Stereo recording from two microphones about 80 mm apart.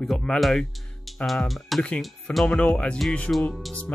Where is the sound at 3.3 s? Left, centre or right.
Centre.